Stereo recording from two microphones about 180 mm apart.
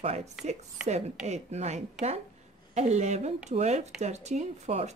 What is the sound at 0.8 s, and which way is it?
Speech, 40° right (ahead or behind).